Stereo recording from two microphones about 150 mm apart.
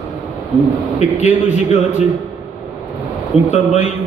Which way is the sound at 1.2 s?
50° left (ahead or behind).